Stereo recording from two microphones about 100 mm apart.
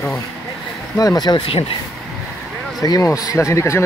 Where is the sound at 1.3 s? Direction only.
70° left (ahead or behind).